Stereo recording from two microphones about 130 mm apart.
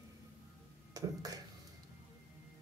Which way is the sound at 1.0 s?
30° right (ahead or behind).